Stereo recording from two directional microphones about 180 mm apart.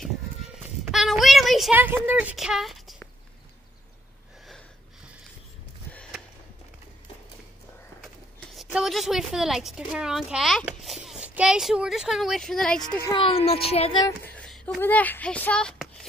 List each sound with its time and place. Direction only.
0.9 s speech: centre (ahead or behind)
4.5 s a sound: centre (ahead or behind)
8.7 s a child's voice: centre (ahead or behind)
13.0 s speech: 25° left (ahead or behind)
14.0 s a sound: 10° left (ahead or behind)
14.8 s speech: 10° left (ahead or behind)